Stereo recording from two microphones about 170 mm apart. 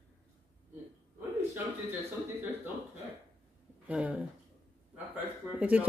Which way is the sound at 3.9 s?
10° right (ahead or behind).